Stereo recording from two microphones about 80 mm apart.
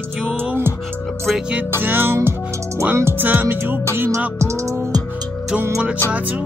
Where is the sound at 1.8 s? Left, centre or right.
Right.